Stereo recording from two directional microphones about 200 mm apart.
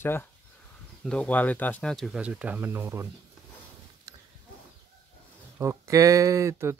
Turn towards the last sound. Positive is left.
turn(degrees=-15)  # may be behind; listen again after turning